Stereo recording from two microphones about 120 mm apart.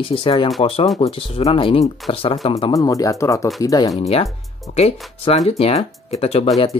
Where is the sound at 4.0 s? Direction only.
55° left (ahead or behind).